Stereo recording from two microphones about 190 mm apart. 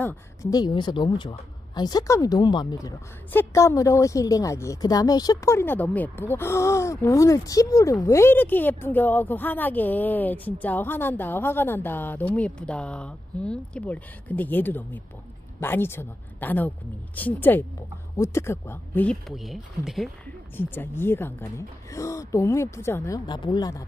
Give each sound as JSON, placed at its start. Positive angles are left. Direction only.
{"t": 0.0, "sound": "a woman's voice", "side_deg": 15}
{"t": 20.5, "sound": "a woman's voice", "side_deg": 10}